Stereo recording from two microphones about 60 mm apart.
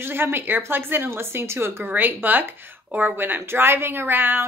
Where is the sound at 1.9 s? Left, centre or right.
Right.